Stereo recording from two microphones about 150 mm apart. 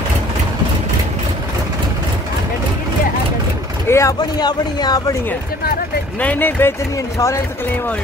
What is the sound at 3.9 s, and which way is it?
Speech, 20° left (ahead or behind).